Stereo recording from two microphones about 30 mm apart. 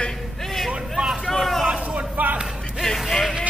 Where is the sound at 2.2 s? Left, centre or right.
Right.